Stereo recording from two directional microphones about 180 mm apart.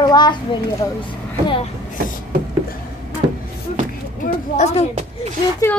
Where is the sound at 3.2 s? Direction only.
30° right (ahead or behind).